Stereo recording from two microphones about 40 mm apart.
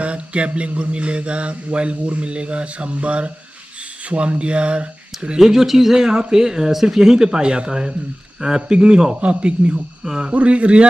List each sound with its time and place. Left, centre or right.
0.0 s mantra: right
5.4 s speech: centre
8.4 s mantra: right
10.0 s mantra: centre
10.3 s a man's voice: right